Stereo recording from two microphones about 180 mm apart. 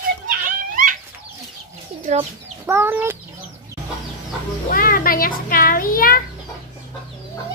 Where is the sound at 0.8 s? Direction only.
50° right (ahead or behind).